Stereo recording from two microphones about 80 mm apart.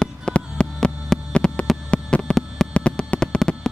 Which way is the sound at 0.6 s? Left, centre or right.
Centre.